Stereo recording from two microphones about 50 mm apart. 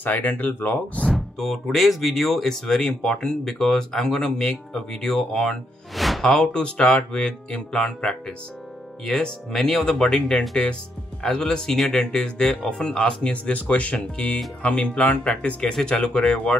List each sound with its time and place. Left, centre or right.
0.0 s speech: left
1.1 s speech: centre
5.9 s music: centre
6.2 s speech: centre
15.6 s speech: centre